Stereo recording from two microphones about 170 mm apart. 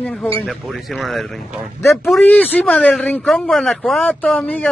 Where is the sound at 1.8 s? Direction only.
15° left (ahead or behind).